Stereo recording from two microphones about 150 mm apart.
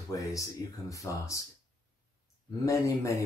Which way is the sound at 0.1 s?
20° left (ahead or behind).